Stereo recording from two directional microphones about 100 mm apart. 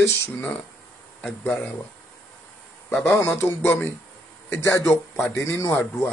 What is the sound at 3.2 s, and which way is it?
Speech, 20° left (ahead or behind).